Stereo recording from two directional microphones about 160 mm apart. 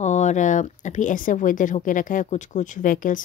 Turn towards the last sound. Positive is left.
turn(degrees=55)  # may be behind; listen again after turning